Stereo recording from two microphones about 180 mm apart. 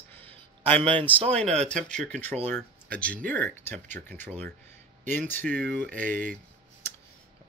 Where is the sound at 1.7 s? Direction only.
40° right (ahead or behind).